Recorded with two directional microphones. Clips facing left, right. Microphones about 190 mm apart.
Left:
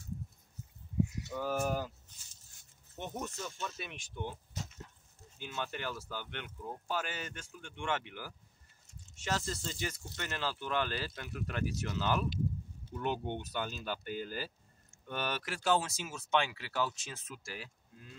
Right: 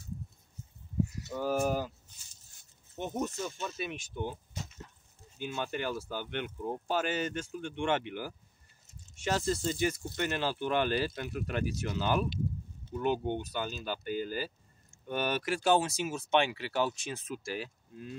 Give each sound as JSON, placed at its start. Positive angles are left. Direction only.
{"t": 1.4, "sound": "speech", "side_deg": -10}
{"t": 3.0, "sound": "speech", "side_deg": -15}
{"t": 5.4, "sound": "speech", "side_deg": -15}